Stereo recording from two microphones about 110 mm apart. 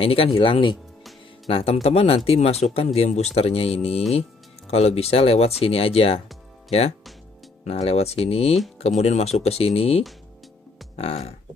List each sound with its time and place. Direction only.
0.0 s speech: 60° left (ahead or behind)
1.5 s speech: 65° left (ahead or behind)
7.6 s speech: 70° left (ahead or behind)